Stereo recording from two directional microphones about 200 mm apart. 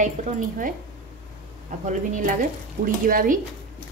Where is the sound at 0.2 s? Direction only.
35° right (ahead or behind).